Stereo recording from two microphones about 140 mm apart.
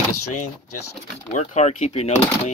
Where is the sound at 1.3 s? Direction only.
55° left (ahead or behind).